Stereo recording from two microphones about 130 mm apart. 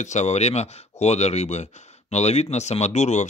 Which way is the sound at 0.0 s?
60° left (ahead or behind).